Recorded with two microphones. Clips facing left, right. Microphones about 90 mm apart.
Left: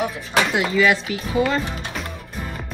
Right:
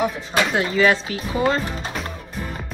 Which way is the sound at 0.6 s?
35° right (ahead or behind).